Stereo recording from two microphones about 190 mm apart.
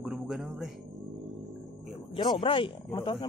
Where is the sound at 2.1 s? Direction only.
25° left (ahead or behind).